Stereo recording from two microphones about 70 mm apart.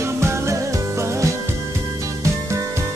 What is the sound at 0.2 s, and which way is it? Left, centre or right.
Music, right.